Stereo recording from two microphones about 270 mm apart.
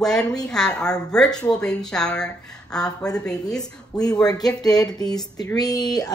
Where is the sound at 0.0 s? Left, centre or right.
Centre.